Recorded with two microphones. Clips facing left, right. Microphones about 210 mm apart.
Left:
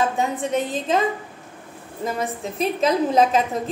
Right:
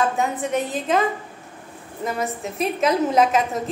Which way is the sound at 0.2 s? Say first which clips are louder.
Even; 25° left (ahead or behind).